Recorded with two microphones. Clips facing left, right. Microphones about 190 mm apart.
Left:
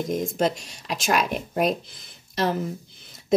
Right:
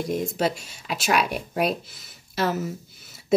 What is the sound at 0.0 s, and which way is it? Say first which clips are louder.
Speech: left 1 dB; 5° right (ahead or behind).